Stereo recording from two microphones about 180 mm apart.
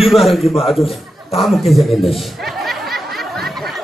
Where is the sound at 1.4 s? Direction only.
Centre (ahead or behind).